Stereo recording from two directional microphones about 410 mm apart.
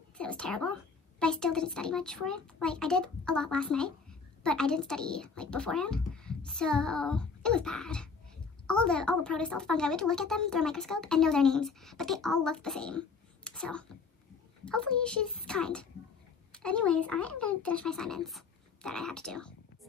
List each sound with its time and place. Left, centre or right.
0.2 s a woman's voice: centre